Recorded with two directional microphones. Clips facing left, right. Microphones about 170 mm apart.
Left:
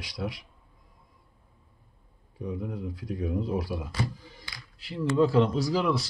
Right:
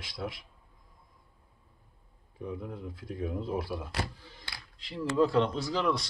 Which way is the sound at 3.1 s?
40° left (ahead or behind).